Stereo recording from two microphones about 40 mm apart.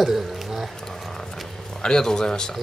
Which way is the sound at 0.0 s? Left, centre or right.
Centre.